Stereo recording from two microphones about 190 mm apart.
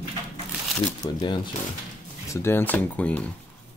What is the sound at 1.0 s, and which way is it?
Speech, 25° left (ahead or behind).